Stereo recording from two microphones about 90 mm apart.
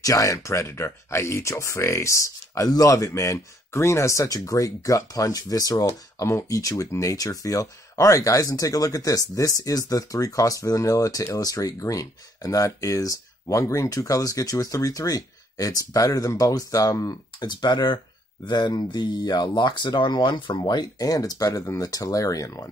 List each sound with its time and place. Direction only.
0.0 s speech: 40° left (ahead or behind)
17.4 s speech: 55° left (ahead or behind)
20.6 s speech: 50° left (ahead or behind)